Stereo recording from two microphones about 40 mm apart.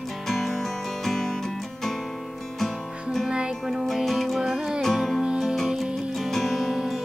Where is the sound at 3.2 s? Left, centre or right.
Right.